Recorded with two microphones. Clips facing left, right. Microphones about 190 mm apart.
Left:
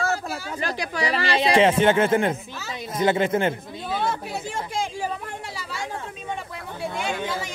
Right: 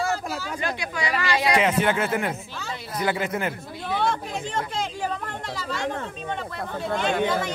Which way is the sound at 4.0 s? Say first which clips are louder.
Right 2 dB; 5° left (ahead or behind).